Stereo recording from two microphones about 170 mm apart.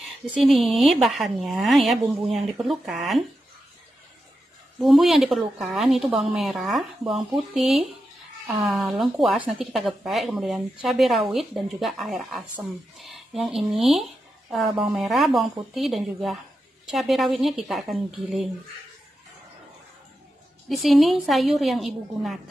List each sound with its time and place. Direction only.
0.4 s speech: centre (ahead or behind)
4.7 s speech: centre (ahead or behind)
20.6 s speech: centre (ahead or behind)